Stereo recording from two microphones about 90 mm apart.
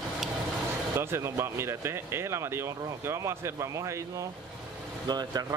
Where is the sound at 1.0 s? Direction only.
30° right (ahead or behind).